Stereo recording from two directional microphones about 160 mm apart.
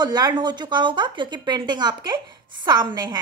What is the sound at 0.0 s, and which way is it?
A woman's voice, 25° right (ahead or behind).